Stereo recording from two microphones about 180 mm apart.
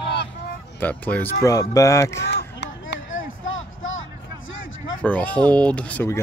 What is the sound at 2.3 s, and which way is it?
Chop, 70° left (ahead or behind).